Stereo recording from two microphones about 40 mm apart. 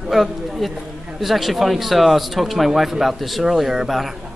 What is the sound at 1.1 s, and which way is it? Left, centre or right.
Speech, centre.